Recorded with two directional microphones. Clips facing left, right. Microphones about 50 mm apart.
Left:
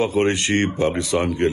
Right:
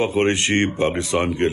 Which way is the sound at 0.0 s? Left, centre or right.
Right.